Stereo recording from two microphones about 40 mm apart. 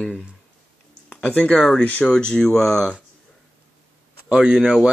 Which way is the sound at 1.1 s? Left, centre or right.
Left.